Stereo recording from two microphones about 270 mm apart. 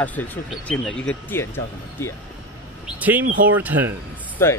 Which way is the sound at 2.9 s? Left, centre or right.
Centre.